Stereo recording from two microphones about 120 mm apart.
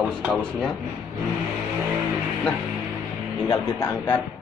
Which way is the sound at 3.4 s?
25° left (ahead or behind).